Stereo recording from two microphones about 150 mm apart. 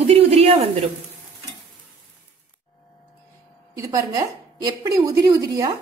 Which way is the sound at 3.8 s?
25° right (ahead or behind).